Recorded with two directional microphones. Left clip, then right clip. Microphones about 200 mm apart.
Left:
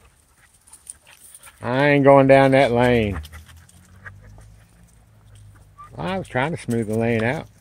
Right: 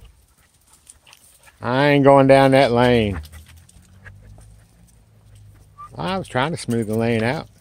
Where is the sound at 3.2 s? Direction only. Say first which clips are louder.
Left 2 dB; centre (ahead or behind).